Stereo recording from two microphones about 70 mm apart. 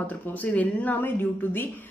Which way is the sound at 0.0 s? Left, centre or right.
Left.